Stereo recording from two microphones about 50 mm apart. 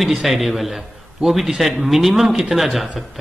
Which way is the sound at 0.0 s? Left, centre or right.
Centre.